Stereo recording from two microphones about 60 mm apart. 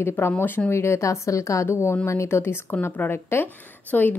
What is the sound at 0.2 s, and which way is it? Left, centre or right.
Speech, left.